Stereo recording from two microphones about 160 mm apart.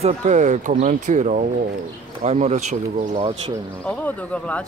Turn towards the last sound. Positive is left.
turn(degrees=10)  # may be behind; listen again after turning